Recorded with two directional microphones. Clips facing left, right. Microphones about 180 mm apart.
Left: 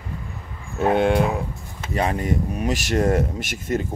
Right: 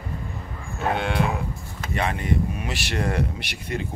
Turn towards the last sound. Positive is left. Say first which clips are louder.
# left 6 dB
turn(degrees=45)  # may be behind; listen again after turning